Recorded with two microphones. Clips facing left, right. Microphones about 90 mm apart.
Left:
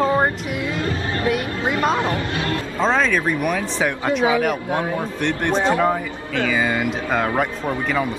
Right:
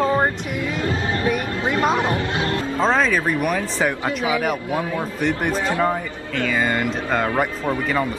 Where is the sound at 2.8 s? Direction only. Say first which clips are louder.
Even; centre (ahead or behind).